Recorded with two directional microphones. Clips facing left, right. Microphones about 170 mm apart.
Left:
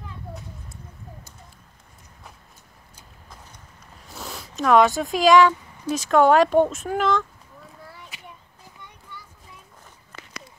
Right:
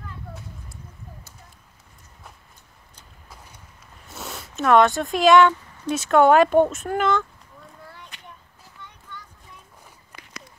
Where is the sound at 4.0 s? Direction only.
Centre (ahead or behind).